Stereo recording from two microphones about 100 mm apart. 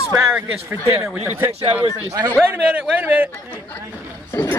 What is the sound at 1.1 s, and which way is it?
A man's voice, 20° right (ahead or behind).